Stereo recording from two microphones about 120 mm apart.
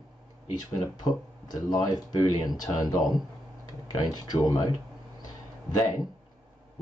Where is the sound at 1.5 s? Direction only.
35° left (ahead or behind).